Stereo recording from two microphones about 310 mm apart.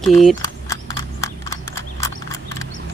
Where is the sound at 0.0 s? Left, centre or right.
Centre.